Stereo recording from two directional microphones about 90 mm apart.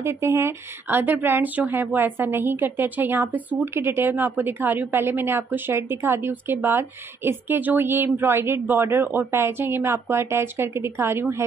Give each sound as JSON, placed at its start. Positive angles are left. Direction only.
{"t": 0.0, "sound": "speech", "side_deg": -30}